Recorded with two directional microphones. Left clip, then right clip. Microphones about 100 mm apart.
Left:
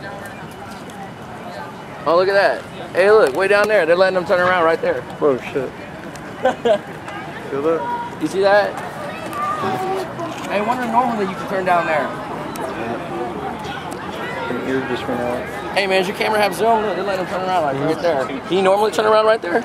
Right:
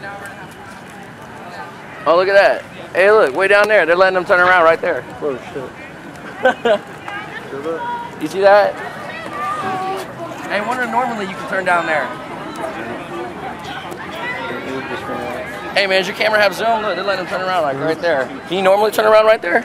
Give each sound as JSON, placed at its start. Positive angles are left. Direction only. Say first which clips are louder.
{"t": 2.0, "sound": "speech", "louder": "right 3 dB", "side_deg": -25}
{"t": 5.2, "sound": "speech", "louder": "left 7 dB", "side_deg": 25}
{"t": 8.2, "sound": "speech", "louder": "right 4 dB", "side_deg": -20}
{"t": 9.4, "sound": "run", "louder": "even", "side_deg": -20}
{"t": 10.5, "sound": "a man's voice", "louder": "even", "side_deg": -15}
{"t": 13.7, "sound": "a sound", "louder": "even", "side_deg": -20}
{"t": 15.6, "sound": "speech", "louder": "right 3 dB", "side_deg": -20}